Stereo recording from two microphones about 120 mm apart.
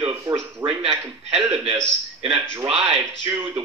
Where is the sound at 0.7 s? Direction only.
45° right (ahead or behind).